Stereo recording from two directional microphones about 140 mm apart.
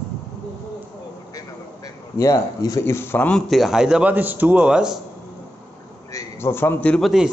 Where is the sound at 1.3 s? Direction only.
25° left (ahead or behind); by 5.0 s 5° right (ahead or behind).